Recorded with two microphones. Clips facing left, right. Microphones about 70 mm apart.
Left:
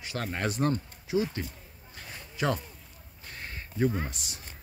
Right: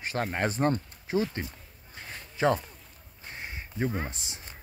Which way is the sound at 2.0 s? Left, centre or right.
Right.